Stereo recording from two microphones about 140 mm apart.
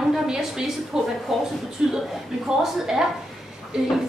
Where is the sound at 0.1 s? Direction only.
5° right (ahead or behind).